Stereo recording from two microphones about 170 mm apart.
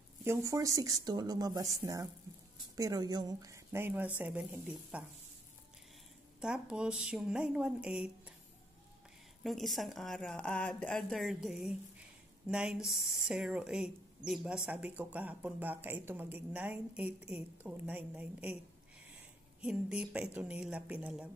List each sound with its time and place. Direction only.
0.2 s speech: 15° right (ahead or behind)
6.4 s a woman's voice: 5° right (ahead or behind)
9.4 s a woman's voice: centre (ahead or behind)